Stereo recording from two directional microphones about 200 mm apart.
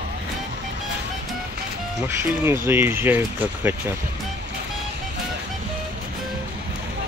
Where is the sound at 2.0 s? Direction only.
10° right (ahead or behind).